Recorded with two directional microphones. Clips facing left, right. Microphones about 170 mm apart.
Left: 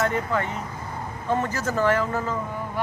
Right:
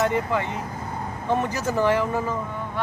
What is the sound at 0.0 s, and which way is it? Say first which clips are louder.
Speech: right 1 dB; 15° right (ahead or behind).